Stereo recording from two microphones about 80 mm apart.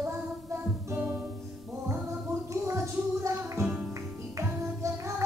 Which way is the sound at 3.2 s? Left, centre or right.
Right.